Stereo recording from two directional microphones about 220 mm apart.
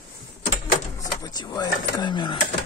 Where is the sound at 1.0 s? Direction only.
15° left (ahead or behind).